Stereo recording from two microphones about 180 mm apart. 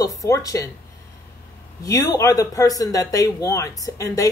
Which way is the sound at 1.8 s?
20° left (ahead or behind).